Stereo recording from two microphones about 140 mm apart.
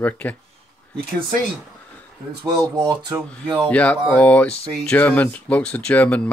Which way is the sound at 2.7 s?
30° right (ahead or behind).